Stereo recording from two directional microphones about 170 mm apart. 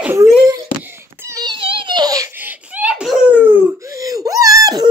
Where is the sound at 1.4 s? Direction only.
30° right (ahead or behind).